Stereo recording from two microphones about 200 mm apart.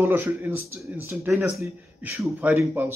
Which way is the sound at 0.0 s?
10° right (ahead or behind).